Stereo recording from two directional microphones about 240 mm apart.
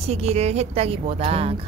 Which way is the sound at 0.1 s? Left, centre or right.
Right.